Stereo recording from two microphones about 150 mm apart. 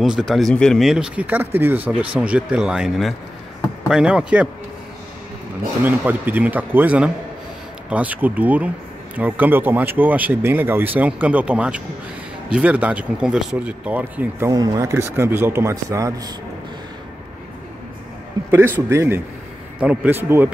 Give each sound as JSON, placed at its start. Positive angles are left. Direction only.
{"t": 0.0, "sound": "speech", "side_deg": 0}
{"t": 5.9, "sound": "speech", "side_deg": -10}
{"t": 14.5, "sound": "a man's voice", "side_deg": -25}
{"t": 18.5, "sound": "speech", "side_deg": -15}